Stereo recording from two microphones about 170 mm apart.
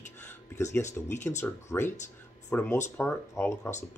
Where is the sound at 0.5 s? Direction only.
15° left (ahead or behind).